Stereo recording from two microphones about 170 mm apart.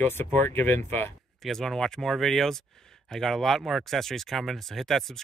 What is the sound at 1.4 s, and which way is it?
Speech, centre (ahead or behind).